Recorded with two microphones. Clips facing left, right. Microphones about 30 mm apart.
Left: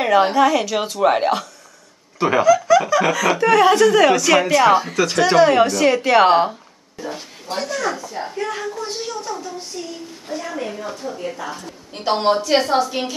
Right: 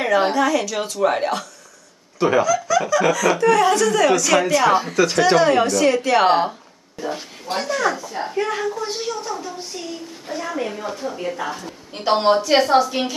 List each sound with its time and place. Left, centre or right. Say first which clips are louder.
0.0 s a woman's voice: left 3 dB; centre
7.5 s speech: right 1 dB; right
7.9 s a woman's voice: right 2 dB; centre